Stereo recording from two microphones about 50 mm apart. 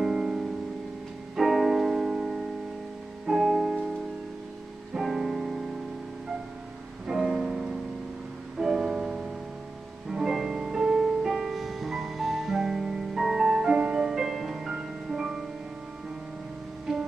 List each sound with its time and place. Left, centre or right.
0.0 s music: centre
4.9 s music: centre
7.1 s music: centre
14.0 s music: centre
16.9 s music: centre